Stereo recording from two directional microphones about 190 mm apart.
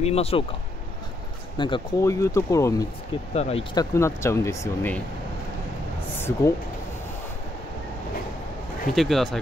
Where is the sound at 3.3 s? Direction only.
35° left (ahead or behind).